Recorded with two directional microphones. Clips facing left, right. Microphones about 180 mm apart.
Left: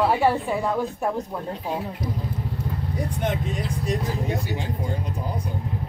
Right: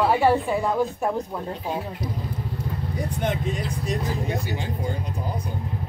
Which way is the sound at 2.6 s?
Centre (ahead or behind).